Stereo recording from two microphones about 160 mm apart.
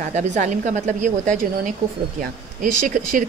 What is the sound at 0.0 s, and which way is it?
A woman's voice, 45° right (ahead or behind).